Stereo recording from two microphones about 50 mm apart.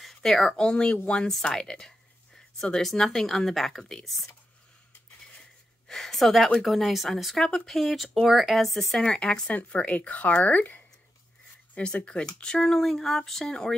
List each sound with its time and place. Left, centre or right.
0.0 s speech: centre
5.9 s speech: centre
9.0 s speech: centre
9.5 s speech: left
11.7 s speech: left